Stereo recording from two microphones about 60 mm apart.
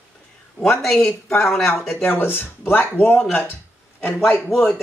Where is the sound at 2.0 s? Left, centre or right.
Left.